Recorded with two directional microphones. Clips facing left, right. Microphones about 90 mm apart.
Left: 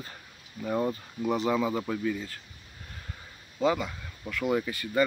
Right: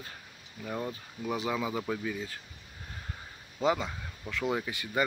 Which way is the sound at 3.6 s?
20° right (ahead or behind).